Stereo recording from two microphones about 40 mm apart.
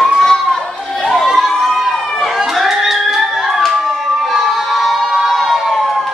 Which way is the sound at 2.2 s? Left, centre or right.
Centre.